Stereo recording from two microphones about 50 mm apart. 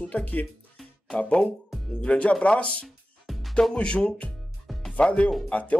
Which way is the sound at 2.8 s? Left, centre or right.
Centre.